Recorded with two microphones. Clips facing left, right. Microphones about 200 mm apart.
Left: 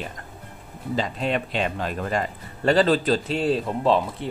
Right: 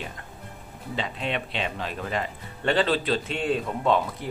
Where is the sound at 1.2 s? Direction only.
45° left (ahead or behind).